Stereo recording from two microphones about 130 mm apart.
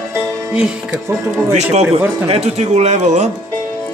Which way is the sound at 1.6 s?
50° right (ahead or behind).